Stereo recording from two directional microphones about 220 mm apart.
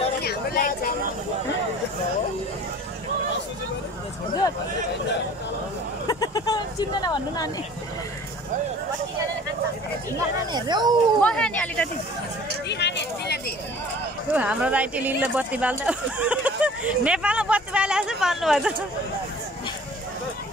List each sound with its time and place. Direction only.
0.2 s a sound: 45° left (ahead or behind)
6.0 s speech: 15° left (ahead or behind)
10.1 s speech: 20° right (ahead or behind)
11.1 s speech: 5° left (ahead or behind)
12.6 s a sound: 50° left (ahead or behind)
14.3 s speech: 5° right (ahead or behind)